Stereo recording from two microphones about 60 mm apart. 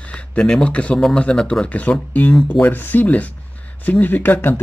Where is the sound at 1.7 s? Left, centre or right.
Left.